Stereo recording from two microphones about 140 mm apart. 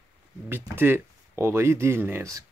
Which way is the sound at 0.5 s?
15° right (ahead or behind).